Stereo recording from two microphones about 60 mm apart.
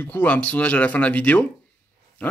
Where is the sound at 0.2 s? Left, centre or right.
Left.